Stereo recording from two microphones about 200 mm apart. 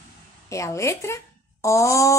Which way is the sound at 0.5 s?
15° left (ahead or behind).